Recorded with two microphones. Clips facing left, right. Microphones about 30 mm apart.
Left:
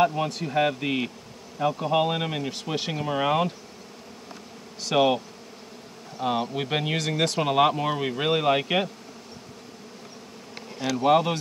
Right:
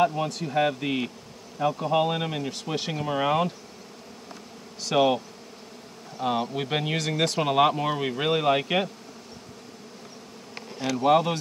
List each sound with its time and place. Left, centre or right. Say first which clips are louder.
0.0 s speech: left 1 dB; left
4.7 s speech: even; centre
11.0 s speech: even; centre